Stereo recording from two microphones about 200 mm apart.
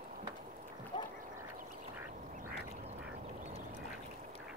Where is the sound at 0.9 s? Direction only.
25° left (ahead or behind).